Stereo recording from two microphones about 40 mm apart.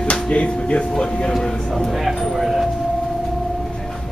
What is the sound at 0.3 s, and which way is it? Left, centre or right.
Speech, left.